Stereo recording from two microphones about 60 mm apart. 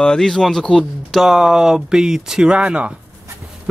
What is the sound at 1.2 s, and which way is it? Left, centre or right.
Speech, centre.